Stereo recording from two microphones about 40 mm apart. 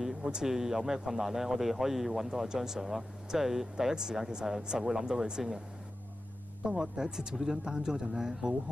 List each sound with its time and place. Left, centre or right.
0.0 s speech: centre
6.6 s speech: centre